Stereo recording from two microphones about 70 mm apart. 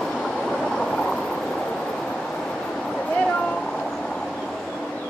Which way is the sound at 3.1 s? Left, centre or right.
Centre.